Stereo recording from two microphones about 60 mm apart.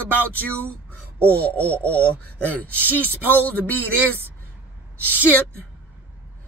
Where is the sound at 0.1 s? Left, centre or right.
Left.